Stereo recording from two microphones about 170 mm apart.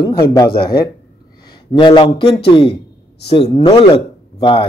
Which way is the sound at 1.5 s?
25° left (ahead or behind).